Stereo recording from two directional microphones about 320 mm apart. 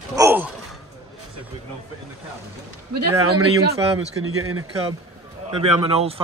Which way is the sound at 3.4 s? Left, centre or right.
Right.